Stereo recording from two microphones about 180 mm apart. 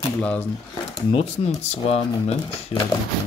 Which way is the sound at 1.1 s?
35° left (ahead or behind).